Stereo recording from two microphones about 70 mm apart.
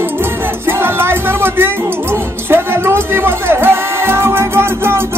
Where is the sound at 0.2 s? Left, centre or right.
Right.